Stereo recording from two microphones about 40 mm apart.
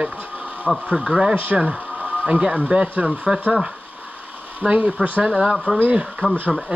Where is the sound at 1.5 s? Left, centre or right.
Centre.